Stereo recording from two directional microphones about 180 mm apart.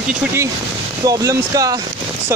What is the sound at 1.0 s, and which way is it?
Speech, 20° right (ahead or behind).